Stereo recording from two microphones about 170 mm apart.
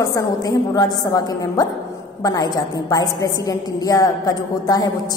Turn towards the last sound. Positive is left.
turn(degrees=20)  # may be behind; listen again after turning